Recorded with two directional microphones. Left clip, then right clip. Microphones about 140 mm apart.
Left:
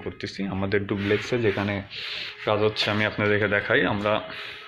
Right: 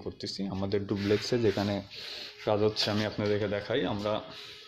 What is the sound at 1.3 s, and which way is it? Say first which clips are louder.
Speech: left 4 dB; 65° right (ahead or behind).